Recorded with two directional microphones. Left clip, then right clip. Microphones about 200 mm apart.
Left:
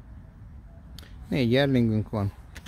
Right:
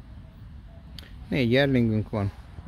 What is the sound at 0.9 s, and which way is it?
Speech, 20° left (ahead or behind).